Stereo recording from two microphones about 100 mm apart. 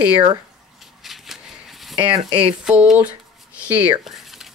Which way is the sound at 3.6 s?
15° right (ahead or behind).